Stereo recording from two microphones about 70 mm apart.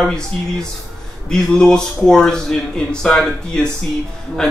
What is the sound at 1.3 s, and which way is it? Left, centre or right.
A man's voice, centre.